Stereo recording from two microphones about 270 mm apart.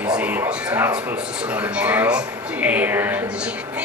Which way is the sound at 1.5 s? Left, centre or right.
Centre.